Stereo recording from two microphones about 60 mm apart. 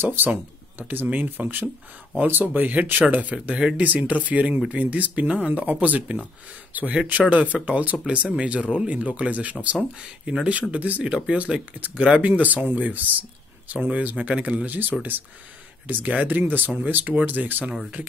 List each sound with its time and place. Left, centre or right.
0.0 s speech: right
10.2 s speech: centre
10.7 s speech: right